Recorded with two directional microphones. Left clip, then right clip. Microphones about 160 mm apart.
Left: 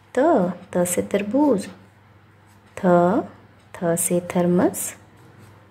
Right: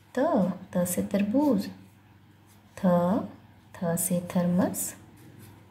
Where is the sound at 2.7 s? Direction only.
20° left (ahead or behind).